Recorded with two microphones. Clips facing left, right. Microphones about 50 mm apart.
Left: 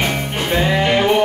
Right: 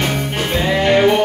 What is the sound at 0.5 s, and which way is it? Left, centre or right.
Music, centre.